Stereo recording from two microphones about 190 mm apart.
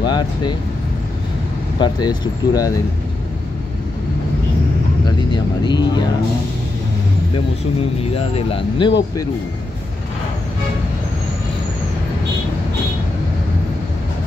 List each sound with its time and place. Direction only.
0.0 s speech: 25° left (ahead or behind)
1.8 s speech: 20° left (ahead or behind)
5.3 s speech: 25° left (ahead or behind)
8.0 s speech: 30° left (ahead or behind)